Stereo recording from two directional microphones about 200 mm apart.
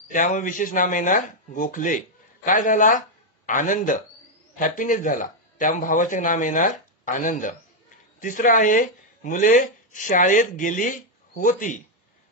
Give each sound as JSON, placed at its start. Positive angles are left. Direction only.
{"t": 0.1, "sound": "speech", "side_deg": 40}